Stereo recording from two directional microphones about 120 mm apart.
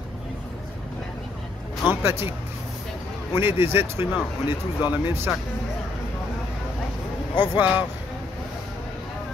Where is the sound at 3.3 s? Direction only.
20° right (ahead or behind).